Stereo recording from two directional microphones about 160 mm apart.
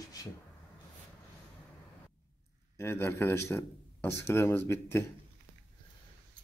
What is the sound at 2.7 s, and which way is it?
Speech, 15° left (ahead or behind).